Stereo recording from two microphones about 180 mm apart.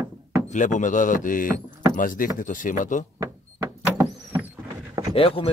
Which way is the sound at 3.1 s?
15° right (ahead or behind).